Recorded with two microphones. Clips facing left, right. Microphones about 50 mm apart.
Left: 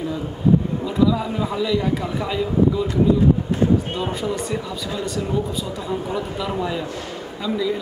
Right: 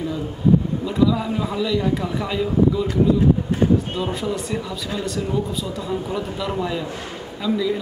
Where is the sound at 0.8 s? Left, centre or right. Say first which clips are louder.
Even; centre.